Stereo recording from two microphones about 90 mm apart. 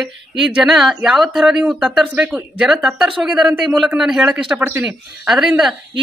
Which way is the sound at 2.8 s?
5° right (ahead or behind).